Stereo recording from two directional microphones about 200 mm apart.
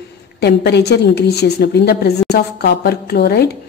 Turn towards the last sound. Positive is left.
turn(degrees=50)  # may be behind; listen again after turning